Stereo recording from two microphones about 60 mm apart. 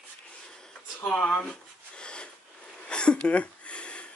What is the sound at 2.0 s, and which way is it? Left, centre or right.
Sniff, centre.